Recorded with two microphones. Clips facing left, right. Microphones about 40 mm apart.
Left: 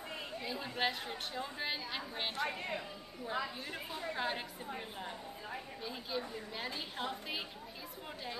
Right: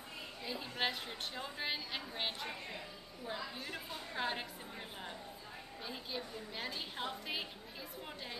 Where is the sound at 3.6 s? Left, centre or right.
Centre.